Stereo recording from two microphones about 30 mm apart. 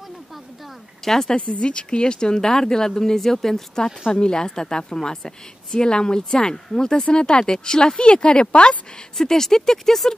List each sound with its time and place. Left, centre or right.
1.0 s speech: centre
1.5 s a woman's voice: left; by 3.8 s centre
4.1 s a woman's voice: left
7.1 s speech: left
9.2 s speech: centre